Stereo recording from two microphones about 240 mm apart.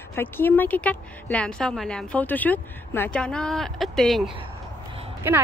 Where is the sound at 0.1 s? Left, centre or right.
Centre.